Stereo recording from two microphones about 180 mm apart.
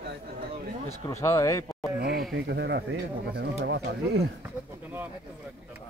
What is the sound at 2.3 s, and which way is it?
Speech, 70° right (ahead or behind).